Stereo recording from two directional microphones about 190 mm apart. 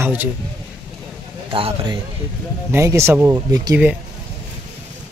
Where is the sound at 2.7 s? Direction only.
15° right (ahead or behind).